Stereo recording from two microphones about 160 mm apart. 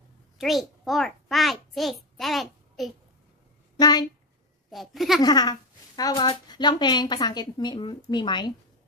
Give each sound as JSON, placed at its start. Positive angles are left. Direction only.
{"t": 0.4, "sound": "a child's voice", "side_deg": 0}
{"t": 4.6, "sound": "a woman's voice", "side_deg": 0}
{"t": 5.2, "sound": "speech", "side_deg": 25}